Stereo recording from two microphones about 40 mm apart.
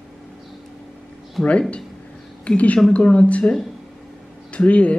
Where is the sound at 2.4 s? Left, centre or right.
Left.